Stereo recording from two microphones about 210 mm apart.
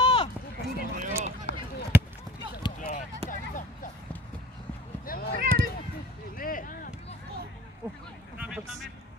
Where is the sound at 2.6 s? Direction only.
20° left (ahead or behind).